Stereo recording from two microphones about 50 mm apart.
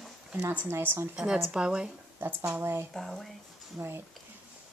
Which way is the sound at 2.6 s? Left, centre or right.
Right.